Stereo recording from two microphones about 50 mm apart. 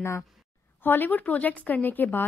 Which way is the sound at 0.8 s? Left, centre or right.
Left.